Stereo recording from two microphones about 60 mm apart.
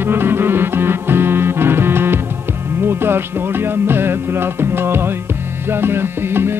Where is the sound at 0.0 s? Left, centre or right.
Right.